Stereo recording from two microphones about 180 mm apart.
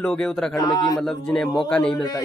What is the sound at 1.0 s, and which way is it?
Speech, centre (ahead or behind).